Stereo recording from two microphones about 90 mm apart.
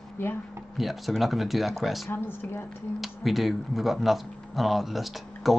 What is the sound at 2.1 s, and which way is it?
Speech, 25° left (ahead or behind).